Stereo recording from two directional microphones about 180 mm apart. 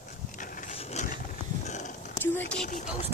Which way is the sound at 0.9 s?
40° left (ahead or behind).